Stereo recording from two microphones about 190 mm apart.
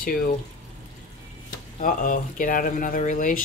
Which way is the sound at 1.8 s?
45° left (ahead or behind).